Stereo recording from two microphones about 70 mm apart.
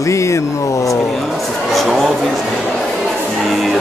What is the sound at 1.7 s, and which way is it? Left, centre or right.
Speech, centre.